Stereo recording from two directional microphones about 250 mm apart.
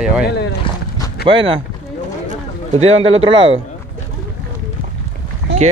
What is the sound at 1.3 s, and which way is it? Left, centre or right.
Speech, right.